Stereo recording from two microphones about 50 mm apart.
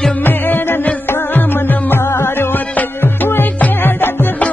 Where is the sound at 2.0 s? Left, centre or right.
Left.